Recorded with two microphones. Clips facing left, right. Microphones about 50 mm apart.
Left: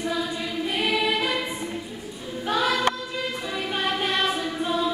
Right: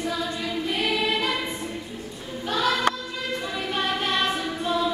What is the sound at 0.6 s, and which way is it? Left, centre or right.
Choir, centre.